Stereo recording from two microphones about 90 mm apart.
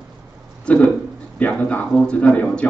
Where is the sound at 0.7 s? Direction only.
15° left (ahead or behind).